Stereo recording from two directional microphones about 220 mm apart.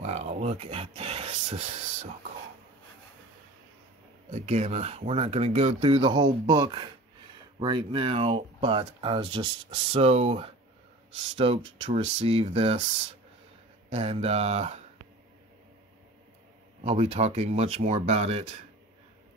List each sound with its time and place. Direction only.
0.0 s speech: 30° right (ahead or behind)
4.3 s speech: 30° right (ahead or behind)
13.8 s speech: 30° right (ahead or behind)
16.8 s speech: 30° right (ahead or behind)